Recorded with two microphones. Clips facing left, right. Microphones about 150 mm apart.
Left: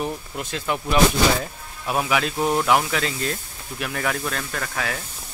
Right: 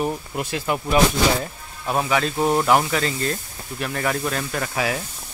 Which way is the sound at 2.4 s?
5° right (ahead or behind).